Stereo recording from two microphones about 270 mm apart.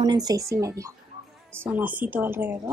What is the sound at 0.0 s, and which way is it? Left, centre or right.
Speech, centre.